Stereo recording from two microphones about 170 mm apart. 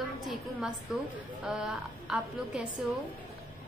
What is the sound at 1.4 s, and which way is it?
A woman's voice, 5° right (ahead or behind).